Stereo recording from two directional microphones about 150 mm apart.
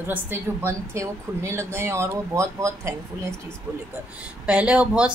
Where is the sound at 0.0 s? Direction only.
15° right (ahead or behind).